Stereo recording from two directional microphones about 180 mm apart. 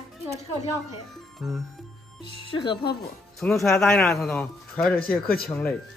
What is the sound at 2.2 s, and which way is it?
Speech, 25° left (ahead or behind).